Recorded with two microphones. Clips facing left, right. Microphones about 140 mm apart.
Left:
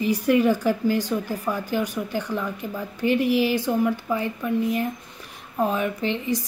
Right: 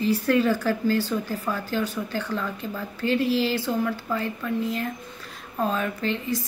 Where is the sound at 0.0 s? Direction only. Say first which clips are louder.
Left 2 dB; 15° left (ahead or behind).